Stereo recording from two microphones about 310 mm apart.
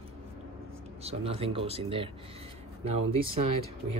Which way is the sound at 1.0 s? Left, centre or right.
Centre.